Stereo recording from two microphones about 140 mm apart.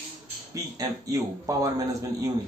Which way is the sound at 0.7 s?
25° right (ahead or behind).